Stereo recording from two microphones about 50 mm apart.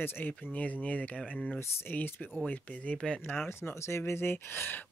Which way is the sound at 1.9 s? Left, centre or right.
Left.